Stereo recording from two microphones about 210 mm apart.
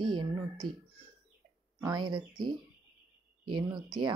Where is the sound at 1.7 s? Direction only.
20° right (ahead or behind).